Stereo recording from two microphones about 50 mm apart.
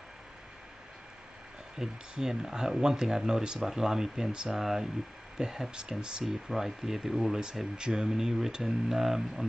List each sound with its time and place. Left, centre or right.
1.8 s speech: centre
4.3 s speech: centre
4.6 s speech: centre
5.8 s speech: centre
6.2 s speech: centre
7.7 s speech: centre